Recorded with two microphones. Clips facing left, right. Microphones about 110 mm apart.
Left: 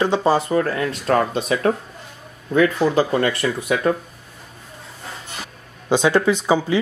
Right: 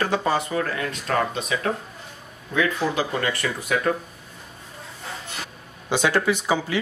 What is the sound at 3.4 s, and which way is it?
Speech, 20° left (ahead or behind).